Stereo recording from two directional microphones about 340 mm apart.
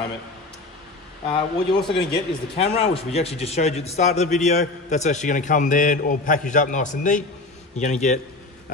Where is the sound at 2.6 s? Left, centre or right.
Centre.